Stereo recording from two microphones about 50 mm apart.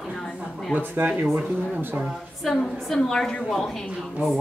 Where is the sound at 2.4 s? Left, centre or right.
Centre.